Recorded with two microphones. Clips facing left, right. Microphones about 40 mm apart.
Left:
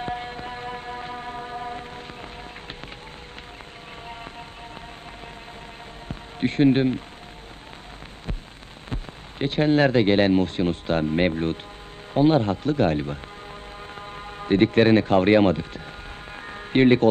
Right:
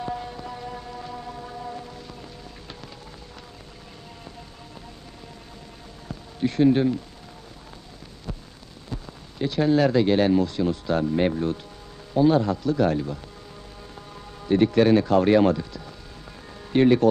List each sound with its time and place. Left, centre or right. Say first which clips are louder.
0.0 s a sound: left 1 dB; left
6.0 s basketball bounce: left 1 dB; left
8.9 s speech: left 1 dB; left
16.4 s music: left 1 dB; left